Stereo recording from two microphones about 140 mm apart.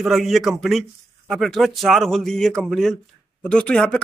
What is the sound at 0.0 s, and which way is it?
Speech, centre (ahead or behind).